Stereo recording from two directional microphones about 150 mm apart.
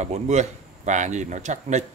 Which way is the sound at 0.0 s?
50° right (ahead or behind).